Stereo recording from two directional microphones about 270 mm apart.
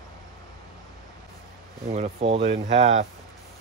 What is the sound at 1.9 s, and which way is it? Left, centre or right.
Speech, right.